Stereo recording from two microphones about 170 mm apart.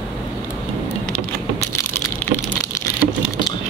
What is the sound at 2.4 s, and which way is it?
Computer keyboard, 20° left (ahead or behind).